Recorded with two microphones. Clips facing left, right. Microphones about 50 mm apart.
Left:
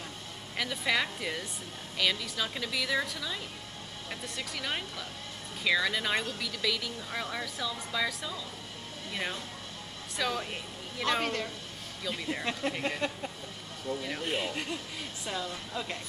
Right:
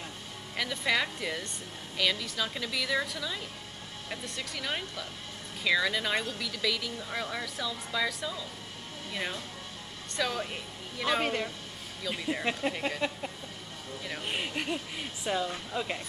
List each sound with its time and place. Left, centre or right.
0.6 s speech: centre
11.2 s speech: centre
14.3 s a woman's voice: centre